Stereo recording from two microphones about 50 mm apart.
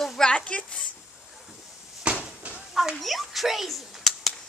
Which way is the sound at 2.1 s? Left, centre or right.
Right.